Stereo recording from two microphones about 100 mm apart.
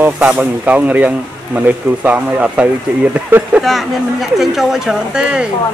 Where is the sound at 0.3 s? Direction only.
15° right (ahead or behind).